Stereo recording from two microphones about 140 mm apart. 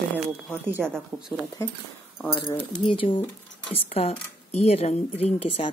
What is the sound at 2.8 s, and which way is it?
A woman's voice, 40° left (ahead or behind).